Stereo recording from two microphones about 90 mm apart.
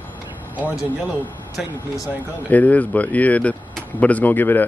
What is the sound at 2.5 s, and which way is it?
Speech, 15° left (ahead or behind).